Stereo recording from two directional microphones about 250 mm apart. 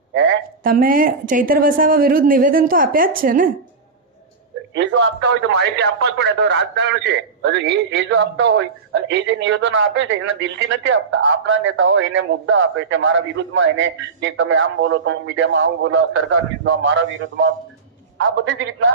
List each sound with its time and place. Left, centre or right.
0.1 s a woman's voice: right
0.7 s a woman's voice: right
4.7 s a man's voice: right